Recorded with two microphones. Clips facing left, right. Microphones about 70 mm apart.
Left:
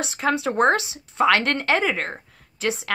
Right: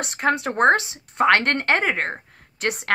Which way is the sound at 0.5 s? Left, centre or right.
Right.